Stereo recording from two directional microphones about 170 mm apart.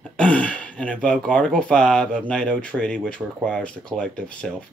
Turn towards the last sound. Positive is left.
turn(degrees=5)  # may be behind; listen again after turning